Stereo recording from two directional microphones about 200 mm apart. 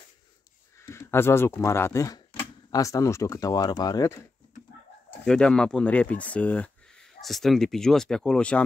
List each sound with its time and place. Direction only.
0.7 s speech: 15° left (ahead or behind)
5.2 s speech: 5° left (ahead or behind)